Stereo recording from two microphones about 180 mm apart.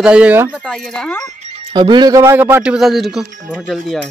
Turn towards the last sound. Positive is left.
turn(degrees=0)  # may be behind; listen again after turning